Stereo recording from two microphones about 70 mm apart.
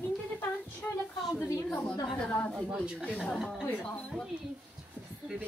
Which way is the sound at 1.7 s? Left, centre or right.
Centre.